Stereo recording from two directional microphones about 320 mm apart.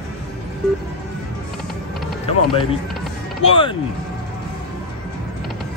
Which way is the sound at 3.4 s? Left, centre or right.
Centre.